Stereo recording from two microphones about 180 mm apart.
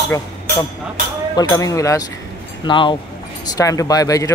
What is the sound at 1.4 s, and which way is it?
Speech, 20° left (ahead or behind).